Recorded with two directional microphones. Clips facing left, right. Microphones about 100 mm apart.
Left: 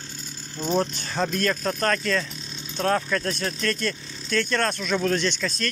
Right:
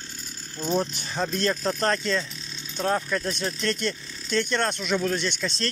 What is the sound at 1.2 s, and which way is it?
Speech, 25° right (ahead or behind).